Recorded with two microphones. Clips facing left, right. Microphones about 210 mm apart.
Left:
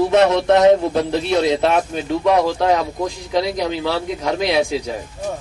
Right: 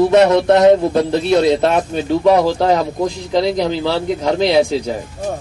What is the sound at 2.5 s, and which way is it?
A man's voice, 30° right (ahead or behind).